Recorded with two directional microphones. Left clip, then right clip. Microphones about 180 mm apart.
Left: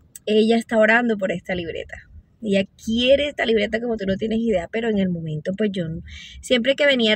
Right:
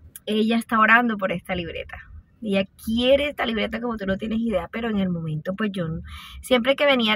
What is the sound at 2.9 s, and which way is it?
Speech, 15° left (ahead or behind).